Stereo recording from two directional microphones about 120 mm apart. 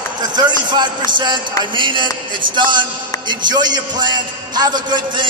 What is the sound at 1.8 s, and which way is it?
A man's voice, 45° right (ahead or behind).